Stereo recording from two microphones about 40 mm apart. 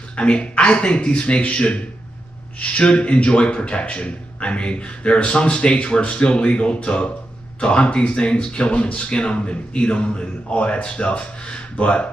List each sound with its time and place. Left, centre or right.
0.1 s speech: left